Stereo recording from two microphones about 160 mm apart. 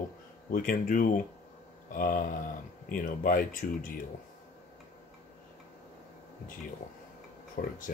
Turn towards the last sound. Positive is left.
turn(degrees=75)  # may be behind; listen again after turning